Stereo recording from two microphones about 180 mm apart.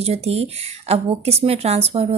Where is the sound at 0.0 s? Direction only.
35° right (ahead or behind).